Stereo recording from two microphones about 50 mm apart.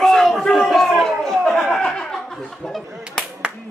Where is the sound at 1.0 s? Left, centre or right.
Centre.